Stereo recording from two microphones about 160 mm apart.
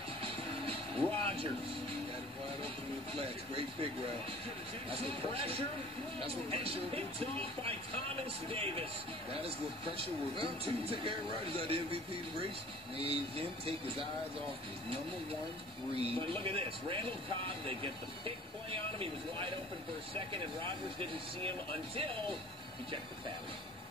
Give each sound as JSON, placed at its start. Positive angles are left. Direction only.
{"t": 0.7, "sound": "music", "side_deg": -35}
{"t": 3.2, "sound": "a man's voice", "side_deg": -35}
{"t": 4.9, "sound": "a man's voice", "side_deg": -35}
{"t": 10.4, "sound": "a man's voice", "side_deg": -35}
{"t": 15.9, "sound": "a man's voice", "side_deg": -35}